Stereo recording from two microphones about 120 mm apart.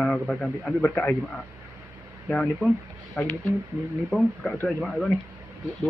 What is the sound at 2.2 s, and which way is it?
A man's voice, 10° left (ahead or behind).